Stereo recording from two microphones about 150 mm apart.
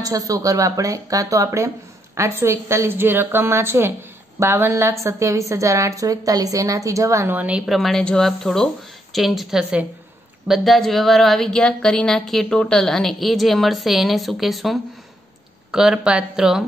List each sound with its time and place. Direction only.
0.0 s a woman's voice: 25° right (ahead or behind); by 16.6 s 5° right (ahead or behind)